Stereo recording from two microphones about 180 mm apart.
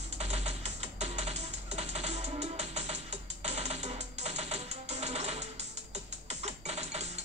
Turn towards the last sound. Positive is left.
turn(degrees=-35)  # may be behind; listen again after turning